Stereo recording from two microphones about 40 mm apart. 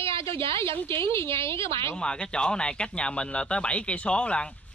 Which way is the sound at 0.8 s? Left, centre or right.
Left.